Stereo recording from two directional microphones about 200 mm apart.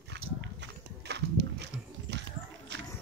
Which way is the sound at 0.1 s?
60° right (ahead or behind).